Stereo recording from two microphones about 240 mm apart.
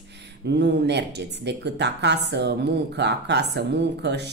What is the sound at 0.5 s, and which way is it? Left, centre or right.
Speech, right.